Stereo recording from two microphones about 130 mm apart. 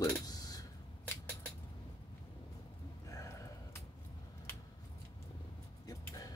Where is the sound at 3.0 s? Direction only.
25° left (ahead or behind).